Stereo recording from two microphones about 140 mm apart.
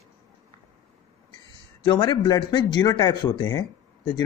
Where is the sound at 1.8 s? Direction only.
30° left (ahead or behind).